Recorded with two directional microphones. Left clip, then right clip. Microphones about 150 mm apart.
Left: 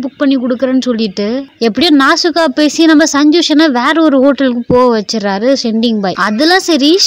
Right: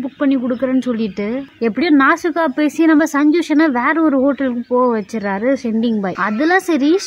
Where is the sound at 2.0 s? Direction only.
30° left (ahead or behind).